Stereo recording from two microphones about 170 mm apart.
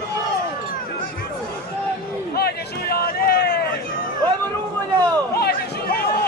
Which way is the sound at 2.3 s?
65° left (ahead or behind).